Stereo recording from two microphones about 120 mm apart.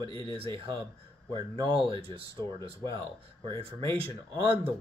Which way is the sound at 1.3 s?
50° right (ahead or behind).